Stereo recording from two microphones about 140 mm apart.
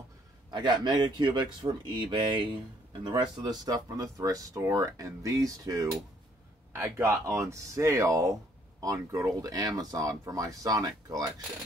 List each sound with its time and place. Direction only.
0.5 s speech: 35° right (ahead or behind)